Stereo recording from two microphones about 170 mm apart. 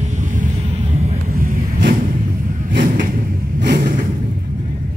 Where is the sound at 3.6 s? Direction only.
65° right (ahead or behind).